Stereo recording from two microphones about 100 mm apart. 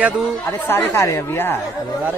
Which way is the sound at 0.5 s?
25° left (ahead or behind).